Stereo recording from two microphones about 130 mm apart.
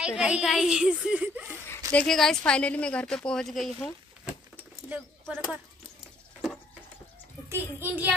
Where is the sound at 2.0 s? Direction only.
5° left (ahead or behind).